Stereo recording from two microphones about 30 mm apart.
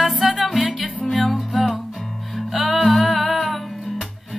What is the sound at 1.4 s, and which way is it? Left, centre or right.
Music, centre.